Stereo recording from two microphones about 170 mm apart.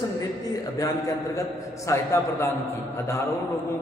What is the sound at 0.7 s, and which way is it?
A man's voice, 20° left (ahead or behind).